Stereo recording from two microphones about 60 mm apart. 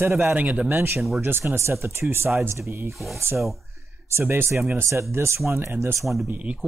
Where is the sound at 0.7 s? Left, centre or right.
Right.